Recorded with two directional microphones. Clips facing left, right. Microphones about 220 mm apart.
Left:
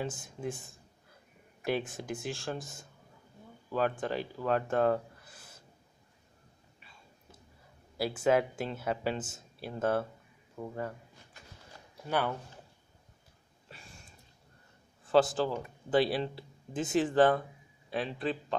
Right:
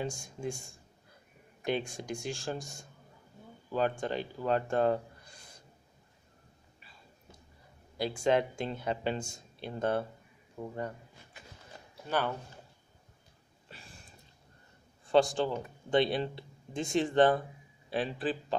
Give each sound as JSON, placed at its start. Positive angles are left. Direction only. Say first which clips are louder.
{"t": 0.0, "sound": "a man's voice", "louder": "even", "side_deg": 5}
{"t": 8.0, "sound": "a man's voice", "louder": "left 1 dB", "side_deg": 5}
{"t": 10.6, "sound": "speech", "louder": "even", "side_deg": -15}
{"t": 13.7, "sound": "a sound", "louder": "even", "side_deg": 0}
{"t": 15.0, "sound": "a man's voice", "louder": "even", "side_deg": 0}